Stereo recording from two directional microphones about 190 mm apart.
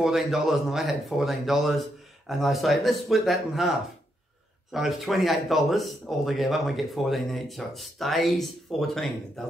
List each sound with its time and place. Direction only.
0.0 s speech: centre (ahead or behind)
4.7 s speech: centre (ahead or behind)